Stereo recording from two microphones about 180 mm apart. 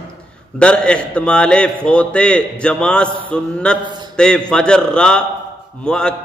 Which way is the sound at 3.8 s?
25° right (ahead or behind).